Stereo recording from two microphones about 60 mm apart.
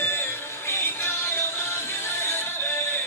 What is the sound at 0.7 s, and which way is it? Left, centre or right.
Music, left.